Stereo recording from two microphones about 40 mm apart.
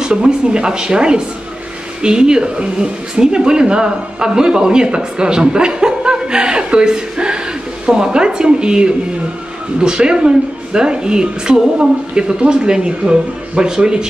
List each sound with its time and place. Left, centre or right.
0.1 s speech: right